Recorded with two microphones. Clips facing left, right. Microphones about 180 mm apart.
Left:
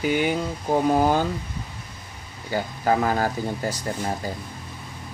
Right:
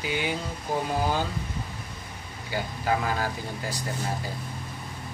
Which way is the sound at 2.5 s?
45° left (ahead or behind).